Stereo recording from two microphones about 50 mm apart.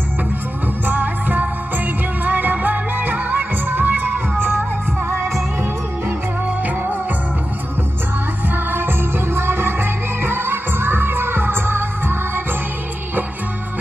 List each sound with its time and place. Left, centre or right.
0.8 s music: right
8.7 s music: right